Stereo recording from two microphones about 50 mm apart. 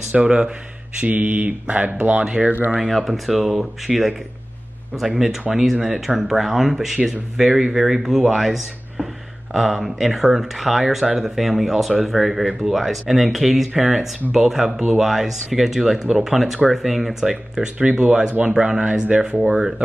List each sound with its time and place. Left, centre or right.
0.1 s speech: centre
1.0 s speech: right
2.2 s speech: centre
2.9 s speech: centre; by 19.5 s right